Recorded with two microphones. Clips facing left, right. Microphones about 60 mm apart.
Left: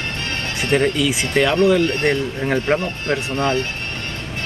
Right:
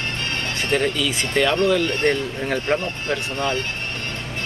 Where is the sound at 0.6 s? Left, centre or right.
Centre.